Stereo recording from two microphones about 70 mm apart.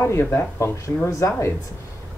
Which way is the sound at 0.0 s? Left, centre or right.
Left.